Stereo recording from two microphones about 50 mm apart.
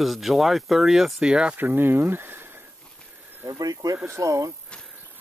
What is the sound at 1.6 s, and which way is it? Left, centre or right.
Speech, right.